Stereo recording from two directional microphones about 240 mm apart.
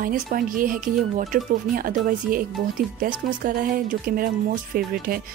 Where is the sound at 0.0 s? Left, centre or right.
Right.